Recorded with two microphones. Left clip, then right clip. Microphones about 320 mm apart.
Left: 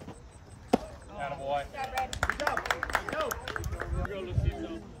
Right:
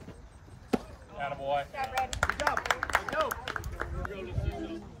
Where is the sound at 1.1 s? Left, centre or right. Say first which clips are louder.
Right 1 dB; right.